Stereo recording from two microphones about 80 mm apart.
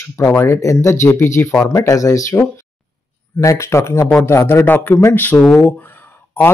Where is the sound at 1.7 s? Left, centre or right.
Left.